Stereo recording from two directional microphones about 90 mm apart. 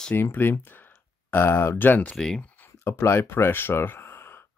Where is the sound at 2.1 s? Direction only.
5° left (ahead or behind).